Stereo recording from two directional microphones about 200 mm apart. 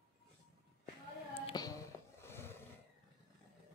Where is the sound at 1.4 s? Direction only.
25° left (ahead or behind).